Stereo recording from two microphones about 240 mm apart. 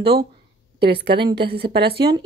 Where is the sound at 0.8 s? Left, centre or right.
Right.